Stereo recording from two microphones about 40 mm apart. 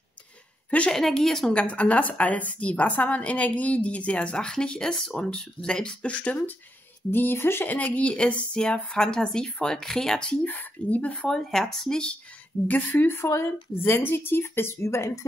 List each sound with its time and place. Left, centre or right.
0.7 s speech: left
0.9 s speech: centre
1.5 s a woman's voice: left
7.1 s a woman's voice: left
7.8 s a woman's voice: left; by 10.2 s centre
10.4 s a woman's voice: left
11.2 s speech: centre
11.9 s speech: left
12.6 s a woman's voice: left